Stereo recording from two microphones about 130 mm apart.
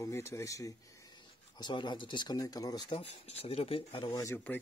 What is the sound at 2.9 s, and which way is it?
Speech, 50° left (ahead or behind).